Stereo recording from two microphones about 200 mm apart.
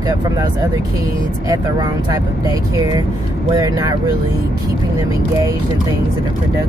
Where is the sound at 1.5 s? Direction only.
15° right (ahead or behind).